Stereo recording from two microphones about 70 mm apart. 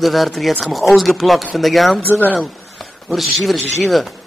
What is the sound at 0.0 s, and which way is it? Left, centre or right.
A man's voice, centre.